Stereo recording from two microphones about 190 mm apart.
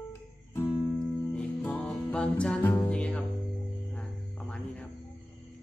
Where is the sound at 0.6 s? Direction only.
5° left (ahead or behind).